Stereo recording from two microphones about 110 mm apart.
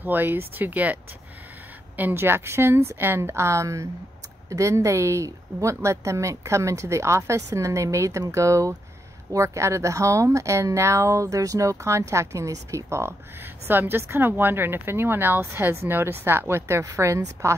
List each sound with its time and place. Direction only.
0.0 s speech: 15° right (ahead or behind)
2.0 s speech: 20° right (ahead or behind)